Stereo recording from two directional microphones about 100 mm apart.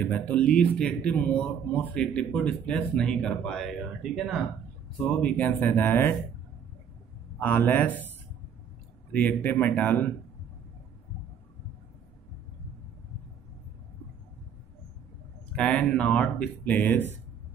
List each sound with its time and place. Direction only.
0.1 s a man's voice: 15° left (ahead or behind)
5.7 s speech: 20° left (ahead or behind)
7.3 s a man's voice: 20° left (ahead or behind)
9.1 s a man's voice: 15° left (ahead or behind)
15.5 s a man's voice: 10° left (ahead or behind)